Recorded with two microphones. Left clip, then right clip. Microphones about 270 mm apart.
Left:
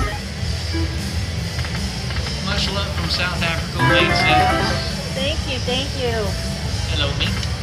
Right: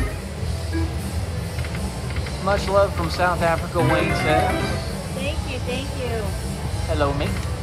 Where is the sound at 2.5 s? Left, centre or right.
Centre.